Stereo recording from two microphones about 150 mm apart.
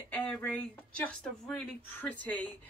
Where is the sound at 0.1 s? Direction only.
10° left (ahead or behind).